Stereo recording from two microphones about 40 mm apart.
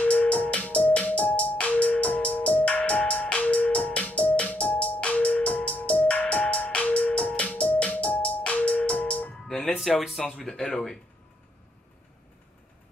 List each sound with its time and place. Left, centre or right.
0.1 s music: left
9.9 s speech: centre
10.4 s speech: centre